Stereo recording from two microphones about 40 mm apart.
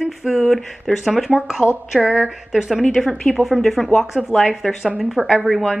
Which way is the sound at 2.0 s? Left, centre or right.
Right.